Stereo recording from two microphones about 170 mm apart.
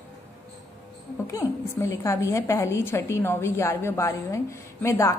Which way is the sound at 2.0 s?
15° left (ahead or behind).